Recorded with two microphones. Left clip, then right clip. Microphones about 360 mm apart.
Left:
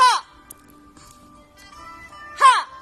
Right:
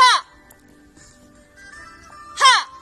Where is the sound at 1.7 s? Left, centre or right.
Right.